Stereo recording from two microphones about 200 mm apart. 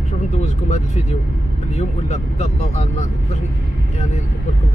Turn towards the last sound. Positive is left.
turn(degrees=35)  # may be behind; listen again after turning